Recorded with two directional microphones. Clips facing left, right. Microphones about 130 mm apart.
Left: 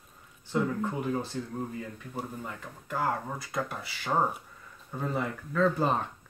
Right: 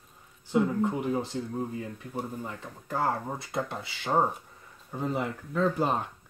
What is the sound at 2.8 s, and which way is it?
Speech, 30° right (ahead or behind).